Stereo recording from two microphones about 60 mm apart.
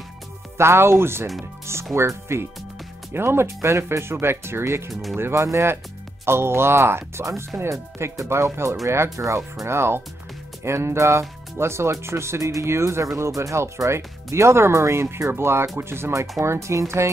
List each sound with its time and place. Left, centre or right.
0.6 s speech: right
9.1 s speech: right
9.7 s speech: right